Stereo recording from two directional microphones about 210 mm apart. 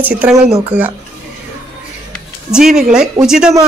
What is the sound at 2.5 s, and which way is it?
Speech, 5° right (ahead or behind).